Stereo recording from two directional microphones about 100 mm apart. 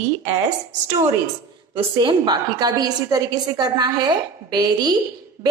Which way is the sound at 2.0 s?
45° right (ahead or behind).